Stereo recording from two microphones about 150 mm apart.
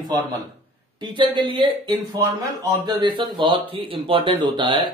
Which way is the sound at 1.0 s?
35° right (ahead or behind).